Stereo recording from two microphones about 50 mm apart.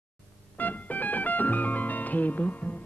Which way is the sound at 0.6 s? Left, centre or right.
Left.